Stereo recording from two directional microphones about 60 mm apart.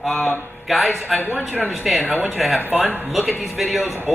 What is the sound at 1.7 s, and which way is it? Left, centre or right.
A man's voice, centre.